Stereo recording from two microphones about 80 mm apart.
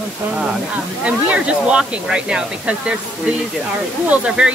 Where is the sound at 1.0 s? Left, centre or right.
Centre.